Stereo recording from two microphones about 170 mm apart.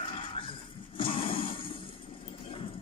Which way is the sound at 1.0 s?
30° left (ahead or behind).